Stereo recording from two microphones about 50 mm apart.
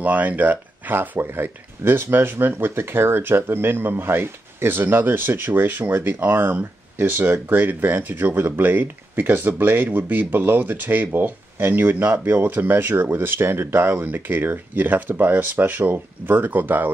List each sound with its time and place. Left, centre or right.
0.0 s speech: right
12.9 s speech: right
13.2 s speech: right